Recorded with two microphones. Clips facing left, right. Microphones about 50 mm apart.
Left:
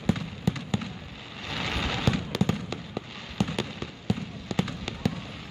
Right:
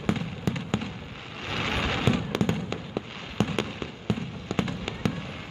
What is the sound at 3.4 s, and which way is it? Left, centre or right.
Fireworks, right.